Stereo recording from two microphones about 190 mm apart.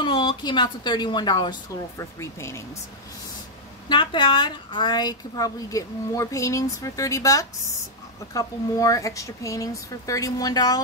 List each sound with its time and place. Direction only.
0.0 s speech: 25° left (ahead or behind)
3.9 s a woman's voice: 25° left (ahead or behind)